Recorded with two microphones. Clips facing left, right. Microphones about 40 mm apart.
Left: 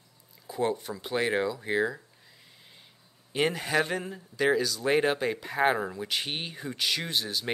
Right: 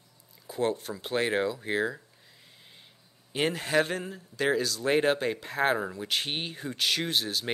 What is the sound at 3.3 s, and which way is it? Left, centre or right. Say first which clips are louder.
Speech: even; centre.